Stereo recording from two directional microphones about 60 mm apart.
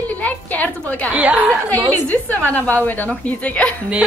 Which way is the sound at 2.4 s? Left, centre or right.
Left.